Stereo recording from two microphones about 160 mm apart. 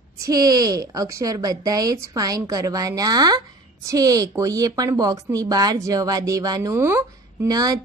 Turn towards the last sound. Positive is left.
turn(degrees=-25)  # may be behind; listen again after turning